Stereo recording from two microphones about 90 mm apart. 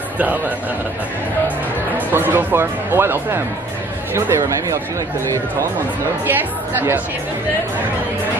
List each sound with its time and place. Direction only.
2.0 s speech: 20° right (ahead or behind)
6.2 s speech: 25° right (ahead or behind)